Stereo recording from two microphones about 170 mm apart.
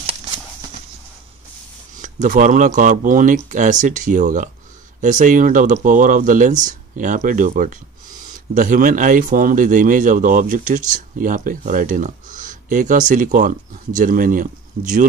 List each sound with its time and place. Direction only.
2.0 s speech: 50° right (ahead or behind)